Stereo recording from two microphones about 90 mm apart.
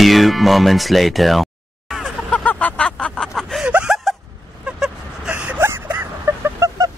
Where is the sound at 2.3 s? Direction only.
15° left (ahead or behind).